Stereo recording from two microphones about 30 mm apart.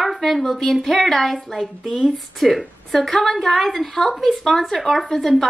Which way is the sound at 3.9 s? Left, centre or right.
Centre.